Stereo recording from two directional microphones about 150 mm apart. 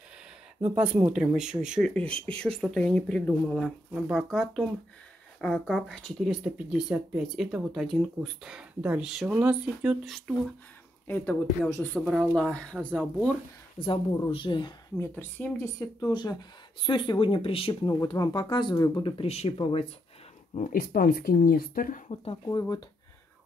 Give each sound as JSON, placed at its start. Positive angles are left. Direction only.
{"t": 0.6, "sound": "speech", "side_deg": -10}
{"t": 2.0, "sound": "speech", "side_deg": -40}
{"t": 2.6, "sound": "speech", "side_deg": 5}
{"t": 5.4, "sound": "speech", "side_deg": 0}
{"t": 11.1, "sound": "speech", "side_deg": 10}
{"t": 13.8, "sound": "speech", "side_deg": 35}
{"t": 15.0, "sound": "speech", "side_deg": 15}
{"t": 19.1, "sound": "speech", "side_deg": 45}
{"t": 20.7, "sound": "speech", "side_deg": 75}
{"t": 22.1, "sound": "speech", "side_deg": 35}